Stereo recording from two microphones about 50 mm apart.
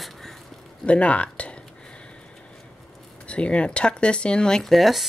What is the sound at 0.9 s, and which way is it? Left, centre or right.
Speech, left.